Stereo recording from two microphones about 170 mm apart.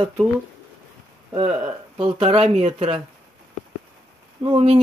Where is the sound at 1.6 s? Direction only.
30° right (ahead or behind).